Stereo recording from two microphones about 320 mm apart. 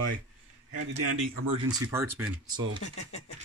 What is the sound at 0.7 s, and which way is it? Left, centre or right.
Speech, right.